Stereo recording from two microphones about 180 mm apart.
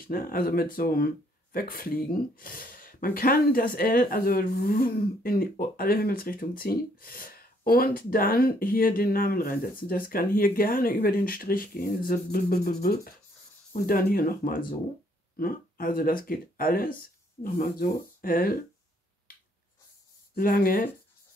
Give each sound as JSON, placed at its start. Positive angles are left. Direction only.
{"t": 0.0, "sound": "speech", "side_deg": 55}
{"t": 20.3, "sound": "speech", "side_deg": 55}